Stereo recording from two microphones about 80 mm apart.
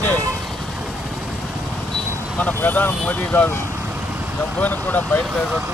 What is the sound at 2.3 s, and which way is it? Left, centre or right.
Speech, centre.